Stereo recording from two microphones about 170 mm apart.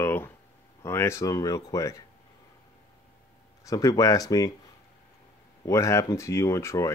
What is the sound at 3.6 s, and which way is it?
Speech, 20° left (ahead or behind).